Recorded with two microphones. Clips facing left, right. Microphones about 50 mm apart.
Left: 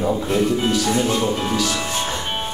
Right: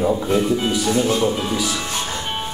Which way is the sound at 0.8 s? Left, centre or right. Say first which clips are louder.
Right 1 dB; centre.